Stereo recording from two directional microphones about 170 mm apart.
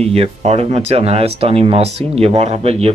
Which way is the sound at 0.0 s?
35° right (ahead or behind).